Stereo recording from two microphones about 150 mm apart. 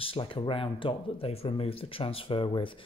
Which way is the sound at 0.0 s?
35° left (ahead or behind).